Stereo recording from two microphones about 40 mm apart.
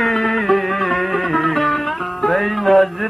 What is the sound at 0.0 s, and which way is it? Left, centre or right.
Music, centre.